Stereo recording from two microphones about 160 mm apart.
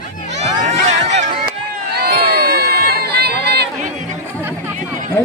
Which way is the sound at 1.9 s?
85° right.